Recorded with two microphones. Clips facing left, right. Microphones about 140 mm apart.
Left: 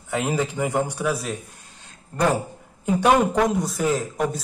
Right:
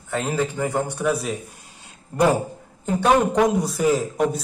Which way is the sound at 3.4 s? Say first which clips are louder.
Right 2 dB; centre (ahead or behind).